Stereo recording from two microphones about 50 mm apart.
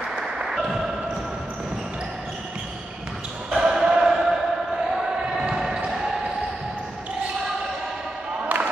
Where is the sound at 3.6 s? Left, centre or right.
Centre.